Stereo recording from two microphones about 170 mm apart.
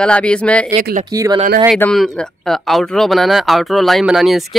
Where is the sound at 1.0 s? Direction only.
20° right (ahead or behind).